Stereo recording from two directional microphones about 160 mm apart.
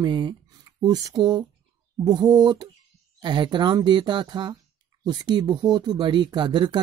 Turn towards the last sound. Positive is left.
turn(degrees=-30)  # may be behind; listen again after turning